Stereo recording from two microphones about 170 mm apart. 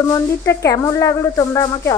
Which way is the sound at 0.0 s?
15° left (ahead or behind).